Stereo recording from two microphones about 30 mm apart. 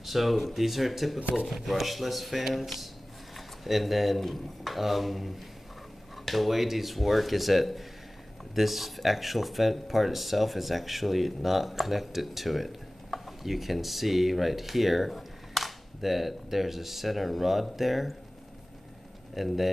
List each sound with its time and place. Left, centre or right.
0.0 s speech: centre
19.3 s speech: centre